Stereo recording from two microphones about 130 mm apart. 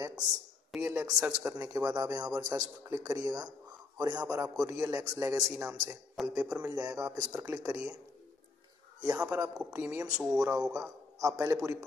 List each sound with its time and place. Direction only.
0.7 s a man's voice: 20° right (ahead or behind)
6.2 s speech: centre (ahead or behind)
6.5 s a man's voice: 25° right (ahead or behind)
9.0 s a man's voice: 25° right (ahead or behind)
10.1 s speech: 5° right (ahead or behind)
10.7 s a man's voice: 25° right (ahead or behind)